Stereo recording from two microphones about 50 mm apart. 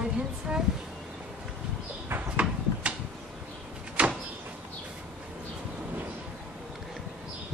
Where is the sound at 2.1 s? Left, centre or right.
Right.